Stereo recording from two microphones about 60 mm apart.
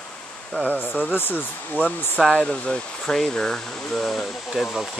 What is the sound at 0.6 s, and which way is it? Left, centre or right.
Speech, left.